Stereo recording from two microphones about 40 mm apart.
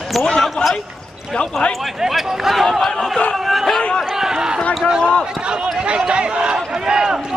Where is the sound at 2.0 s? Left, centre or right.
Centre.